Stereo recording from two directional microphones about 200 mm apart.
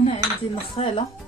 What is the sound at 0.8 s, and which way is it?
Speech, 30° left (ahead or behind).